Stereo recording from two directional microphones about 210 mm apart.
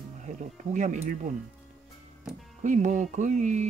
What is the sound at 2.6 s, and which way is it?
Speech, 35° right (ahead or behind).